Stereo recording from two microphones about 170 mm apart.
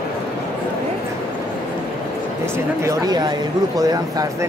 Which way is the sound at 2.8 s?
25° right (ahead or behind).